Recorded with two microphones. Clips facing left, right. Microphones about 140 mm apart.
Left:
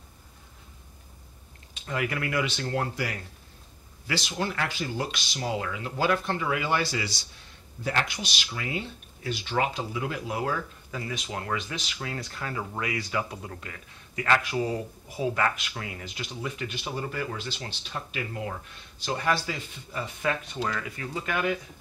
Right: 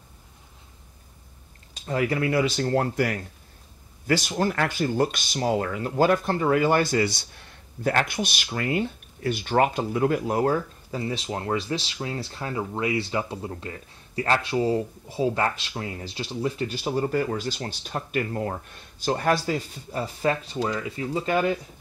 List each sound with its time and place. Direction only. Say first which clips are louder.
1.7 s speech: right 5 dB; 35° right (ahead or behind)
11.0 s speech: right 5 dB; 30° right (ahead or behind)